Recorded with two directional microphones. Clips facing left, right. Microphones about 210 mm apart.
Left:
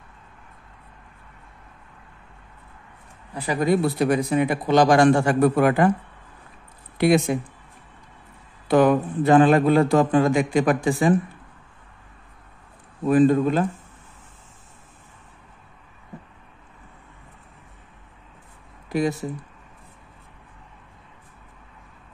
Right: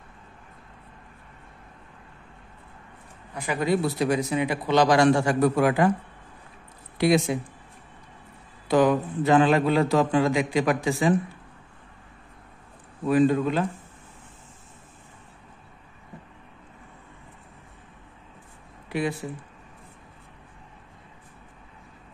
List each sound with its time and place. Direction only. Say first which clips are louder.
3.3 s speech: left 4 dB; 35° left (ahead or behind)
3.6 s a man's voice: left 3 dB; 55° left (ahead or behind)
7.0 s a man's voice: left 3 dB; 55° left (ahead or behind)
8.6 s a man's voice: left 3 dB; 55° left (ahead or behind)
13.0 s a man's voice: left 3 dB; 45° left (ahead or behind)
18.9 s a sound: left 4 dB; 40° left (ahead or behind)